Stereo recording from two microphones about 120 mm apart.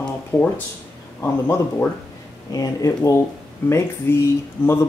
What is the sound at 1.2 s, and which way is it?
Speech, 20° left (ahead or behind).